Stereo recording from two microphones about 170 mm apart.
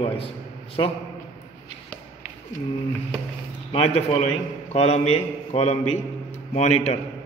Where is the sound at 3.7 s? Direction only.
35° left (ahead or behind).